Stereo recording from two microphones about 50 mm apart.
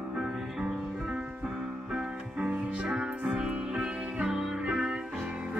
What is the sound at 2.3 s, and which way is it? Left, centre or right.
Music, right.